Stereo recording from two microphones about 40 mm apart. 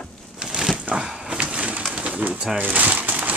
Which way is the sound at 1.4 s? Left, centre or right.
Right.